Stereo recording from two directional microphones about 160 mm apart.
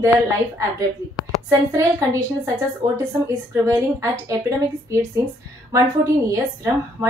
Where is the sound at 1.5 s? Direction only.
20° right (ahead or behind).